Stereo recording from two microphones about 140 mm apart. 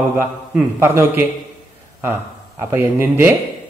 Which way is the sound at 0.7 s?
20° right (ahead or behind).